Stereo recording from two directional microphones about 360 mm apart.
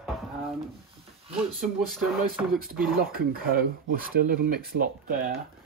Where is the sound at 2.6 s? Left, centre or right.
Right.